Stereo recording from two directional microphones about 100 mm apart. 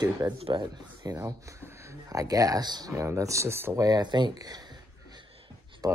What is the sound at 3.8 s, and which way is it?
Speech, 45° right (ahead or behind).